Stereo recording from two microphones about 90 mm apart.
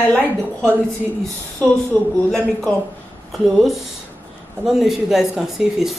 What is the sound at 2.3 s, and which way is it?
Speech, 10° left (ahead or behind).